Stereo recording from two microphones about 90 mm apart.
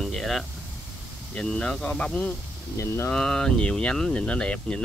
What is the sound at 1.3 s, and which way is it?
Speech, 10° left (ahead or behind).